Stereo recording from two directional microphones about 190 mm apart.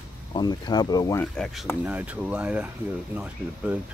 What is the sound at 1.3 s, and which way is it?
Speech, 5° left (ahead or behind).